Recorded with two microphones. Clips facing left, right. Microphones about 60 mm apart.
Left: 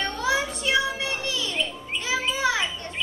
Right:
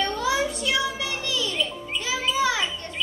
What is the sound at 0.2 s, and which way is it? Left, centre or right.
Music, left.